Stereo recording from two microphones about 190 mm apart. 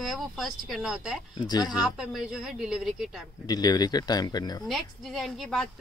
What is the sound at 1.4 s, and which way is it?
Speech, 20° left (ahead or behind).